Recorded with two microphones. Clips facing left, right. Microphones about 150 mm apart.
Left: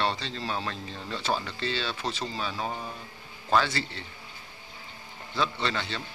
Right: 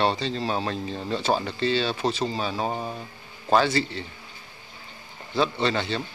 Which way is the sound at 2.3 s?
30° right (ahead or behind).